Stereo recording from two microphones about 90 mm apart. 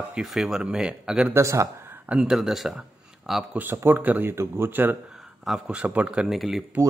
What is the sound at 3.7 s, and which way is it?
Speech, 20° right (ahead or behind).